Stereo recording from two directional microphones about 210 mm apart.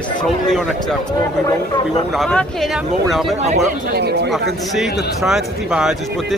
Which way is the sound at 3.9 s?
50° right (ahead or behind).